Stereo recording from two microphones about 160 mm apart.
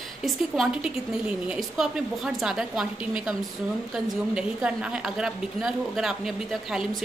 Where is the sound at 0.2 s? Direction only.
5° right (ahead or behind).